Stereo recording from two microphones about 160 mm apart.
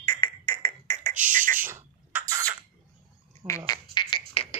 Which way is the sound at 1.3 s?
55° right (ahead or behind).